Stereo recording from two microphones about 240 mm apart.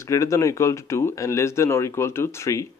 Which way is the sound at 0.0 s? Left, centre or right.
Centre.